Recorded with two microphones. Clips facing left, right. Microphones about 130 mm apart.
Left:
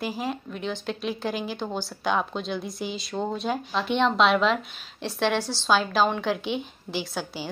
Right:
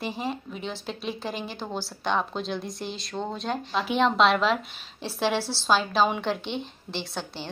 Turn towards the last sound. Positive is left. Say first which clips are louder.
# left 3 dB
turn(degrees=5)  # may be behind; listen again after turning